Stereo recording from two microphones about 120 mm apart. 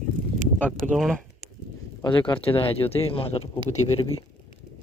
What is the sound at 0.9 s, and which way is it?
Speech, centre (ahead or behind).